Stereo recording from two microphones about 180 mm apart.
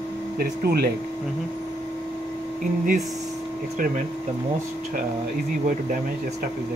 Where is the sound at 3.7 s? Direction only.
45° right (ahead or behind).